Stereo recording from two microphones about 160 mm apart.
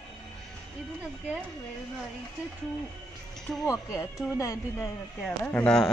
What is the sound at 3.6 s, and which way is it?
Speech, 20° left (ahead or behind).